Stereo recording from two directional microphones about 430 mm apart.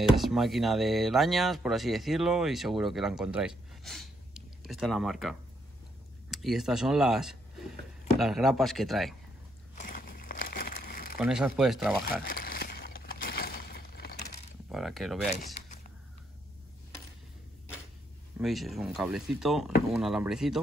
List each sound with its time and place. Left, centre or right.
0.1 s speech: centre
6.3 s speech: centre
9.8 s crumpling: centre
11.1 s speech: centre
12.2 s a sound: left
14.7 s speech: centre
18.4 s speech: centre